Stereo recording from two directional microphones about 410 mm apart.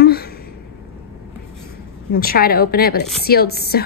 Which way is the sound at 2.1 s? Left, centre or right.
Left.